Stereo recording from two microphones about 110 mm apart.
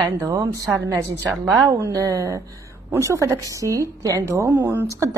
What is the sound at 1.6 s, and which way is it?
Speech, 30° right (ahead or behind).